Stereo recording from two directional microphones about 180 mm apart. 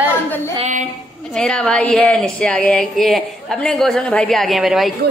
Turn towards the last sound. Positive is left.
turn(degrees=0)  # may be behind; listen again after turning